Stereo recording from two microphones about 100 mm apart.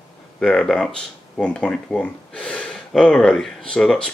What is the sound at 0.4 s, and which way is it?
Speech, 5° left (ahead or behind).